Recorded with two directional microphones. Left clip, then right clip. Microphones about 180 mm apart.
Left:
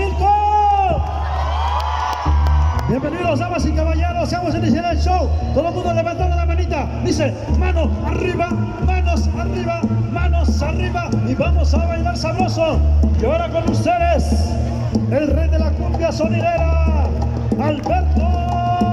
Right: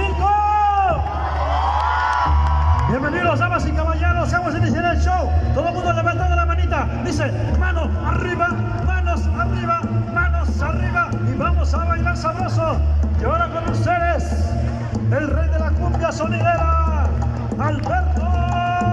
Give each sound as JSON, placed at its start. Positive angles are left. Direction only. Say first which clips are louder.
{"t": 0.2, "sound": "a sound", "louder": "left 2 dB", "side_deg": 30}
{"t": 3.3, "sound": "music", "louder": "even", "side_deg": 25}
{"t": 4.2, "sound": "a man's voice", "louder": "left 1 dB", "side_deg": 25}
{"t": 13.2, "sound": "a man's voice", "louder": "left 2 dB", "side_deg": 30}
{"t": 16.0, "sound": "a man's voice", "louder": "left 3 dB", "side_deg": 25}